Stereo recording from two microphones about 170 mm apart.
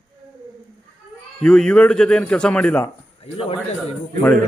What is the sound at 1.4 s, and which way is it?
A man's voice, 5° left (ahead or behind).